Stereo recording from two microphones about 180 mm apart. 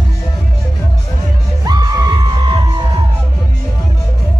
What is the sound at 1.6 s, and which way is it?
Music, 20° right (ahead or behind).